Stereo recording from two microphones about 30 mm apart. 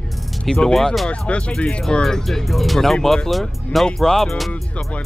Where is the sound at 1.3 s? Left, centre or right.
Left.